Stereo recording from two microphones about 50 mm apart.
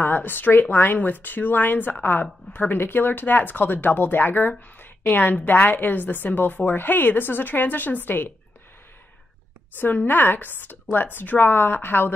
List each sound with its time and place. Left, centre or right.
0.0 s speech: left
9.8 s speech: left